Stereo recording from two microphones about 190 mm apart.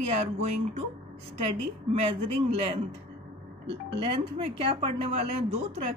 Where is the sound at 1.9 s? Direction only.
30° right (ahead or behind).